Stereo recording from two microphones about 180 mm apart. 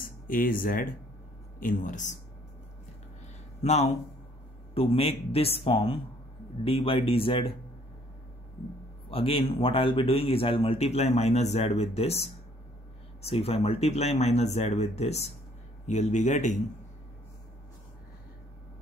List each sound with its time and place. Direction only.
0.3 s speech: 50° left (ahead or behind)
3.6 s speech: 35° left (ahead or behind)
9.1 s speech: 30° left (ahead or behind)